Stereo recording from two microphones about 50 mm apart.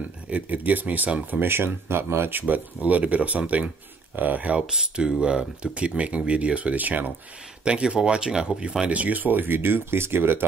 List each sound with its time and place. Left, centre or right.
0.3 s speech: right
1.4 s speech: right
2.4 s speech: right
4.6 s speech: centre; by 7.1 s right
7.6 s speech: right
8.8 s speech: right